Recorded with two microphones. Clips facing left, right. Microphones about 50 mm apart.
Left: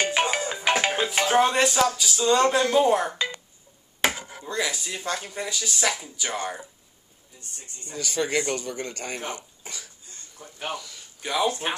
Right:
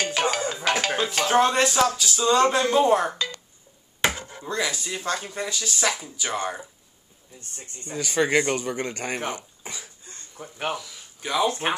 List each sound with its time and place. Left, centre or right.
0.0 s music: left
1.1 s speech: centre
4.0 s chopping: centre
4.4 s speech: centre
7.3 s speech: right
10.7 s speech: centre